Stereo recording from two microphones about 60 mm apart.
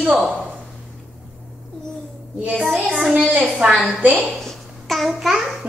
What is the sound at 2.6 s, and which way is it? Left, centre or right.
Speech, centre.